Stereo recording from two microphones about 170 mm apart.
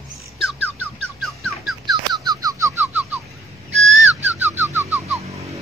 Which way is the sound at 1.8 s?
25° right (ahead or behind).